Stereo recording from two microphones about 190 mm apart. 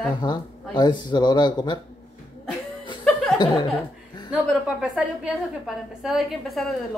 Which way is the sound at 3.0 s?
Centre (ahead or behind).